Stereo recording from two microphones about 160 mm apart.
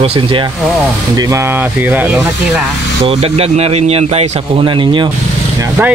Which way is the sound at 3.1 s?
35° right (ahead or behind).